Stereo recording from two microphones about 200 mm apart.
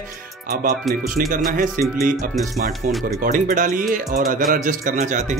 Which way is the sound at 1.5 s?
45° right (ahead or behind).